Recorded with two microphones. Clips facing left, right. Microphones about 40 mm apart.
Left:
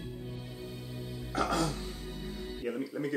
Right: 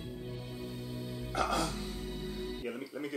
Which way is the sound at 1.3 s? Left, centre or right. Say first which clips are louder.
Left 2 dB; centre.